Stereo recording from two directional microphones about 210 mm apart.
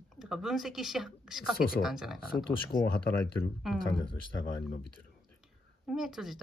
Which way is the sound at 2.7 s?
20° left (ahead or behind).